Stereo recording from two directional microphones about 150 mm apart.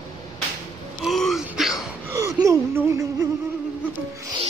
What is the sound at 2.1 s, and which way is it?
Speech, 20° right (ahead or behind).